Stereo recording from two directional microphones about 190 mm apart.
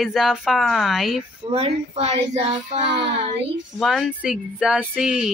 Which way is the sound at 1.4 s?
30° right (ahead or behind).